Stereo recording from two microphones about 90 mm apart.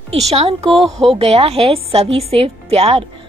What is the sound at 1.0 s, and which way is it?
A woman's voice, 90° right.